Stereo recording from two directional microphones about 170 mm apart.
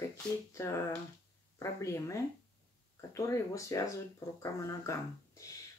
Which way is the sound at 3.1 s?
20° left (ahead or behind).